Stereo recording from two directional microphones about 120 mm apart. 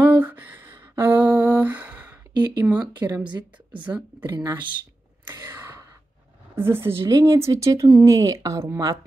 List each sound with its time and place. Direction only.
0.0 s a sound: 15° right (ahead or behind)
2.0 s a sound: 30° right (ahead or behind)
2.6 s speech: 15° right (ahead or behind)
3.3 s a woman's voice: 40° right (ahead or behind)
5.4 s gasp: 20° right (ahead or behind)
6.5 s speech: 20° right (ahead or behind)